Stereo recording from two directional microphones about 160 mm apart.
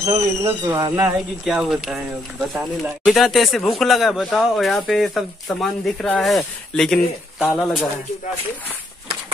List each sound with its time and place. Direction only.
0.0 s speech: 20° right (ahead or behind)
1.4 s speech: centre (ahead or behind)